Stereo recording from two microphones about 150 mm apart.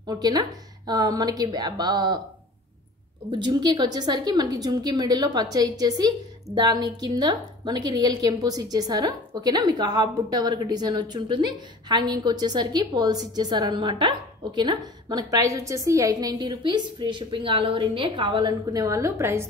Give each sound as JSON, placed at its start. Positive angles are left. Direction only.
{"t": 0.0, "sound": "a woman's voice", "side_deg": -25}
{"t": 3.3, "sound": "a woman's voice", "side_deg": -30}